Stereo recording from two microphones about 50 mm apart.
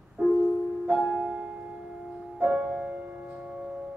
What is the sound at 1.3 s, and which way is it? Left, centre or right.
Music, right.